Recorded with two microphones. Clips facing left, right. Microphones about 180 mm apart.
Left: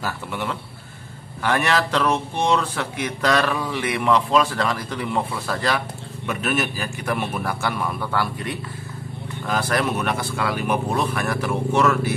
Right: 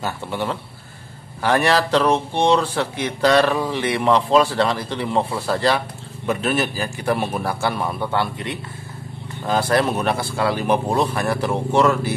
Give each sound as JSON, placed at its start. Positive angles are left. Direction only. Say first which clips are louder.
{"t": 0.0, "sound": "a man's voice", "louder": "right 3 dB", "side_deg": -30}